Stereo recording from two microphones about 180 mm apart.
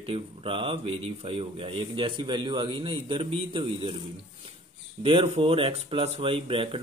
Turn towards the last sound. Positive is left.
turn(degrees=-30)  # may be behind; listen again after turning